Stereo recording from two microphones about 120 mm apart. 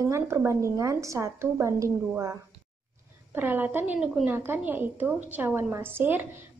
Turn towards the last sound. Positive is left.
turn(degrees=-15)  # may be behind; listen again after turning